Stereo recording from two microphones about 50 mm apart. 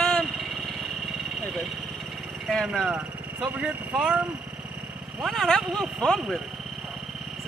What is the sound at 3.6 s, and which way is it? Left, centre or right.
Speech, centre.